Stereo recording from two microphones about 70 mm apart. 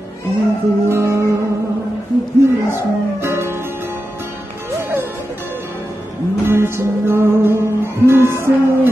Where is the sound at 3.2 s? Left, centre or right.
Right.